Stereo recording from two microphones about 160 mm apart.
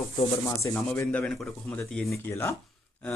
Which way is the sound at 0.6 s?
10° left (ahead or behind).